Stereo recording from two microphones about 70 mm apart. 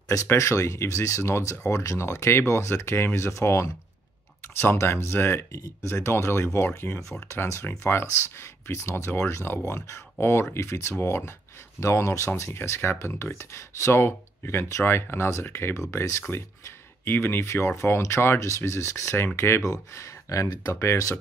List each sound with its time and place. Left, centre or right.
0.1 s speech: left
4.6 s speech: left
5.6 s speech: left
7.0 s speech: left
11.8 s speech: left
12.3 s speech: left
19.6 s speech: left